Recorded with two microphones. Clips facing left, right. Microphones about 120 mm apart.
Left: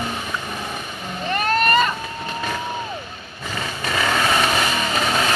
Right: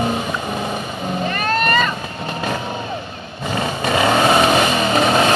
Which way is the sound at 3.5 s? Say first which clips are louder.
Right 7 dB; 40° right (ahead or behind).